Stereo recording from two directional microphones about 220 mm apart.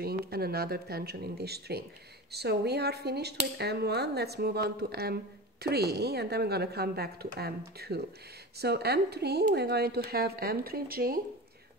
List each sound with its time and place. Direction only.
0.0 s speech: 45° right (ahead or behind)